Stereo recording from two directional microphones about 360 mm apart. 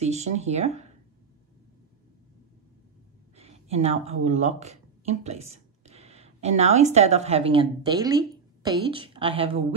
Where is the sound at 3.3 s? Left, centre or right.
Centre.